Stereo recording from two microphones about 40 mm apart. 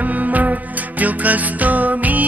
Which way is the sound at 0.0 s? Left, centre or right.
Right.